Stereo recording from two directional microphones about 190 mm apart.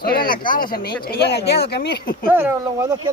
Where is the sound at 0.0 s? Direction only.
50° left (ahead or behind).